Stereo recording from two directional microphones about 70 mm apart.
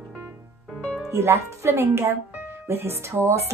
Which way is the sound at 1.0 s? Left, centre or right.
Right.